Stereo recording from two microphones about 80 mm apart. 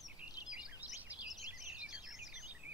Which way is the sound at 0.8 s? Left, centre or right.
Centre.